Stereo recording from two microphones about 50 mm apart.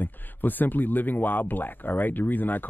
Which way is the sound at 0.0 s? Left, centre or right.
Left.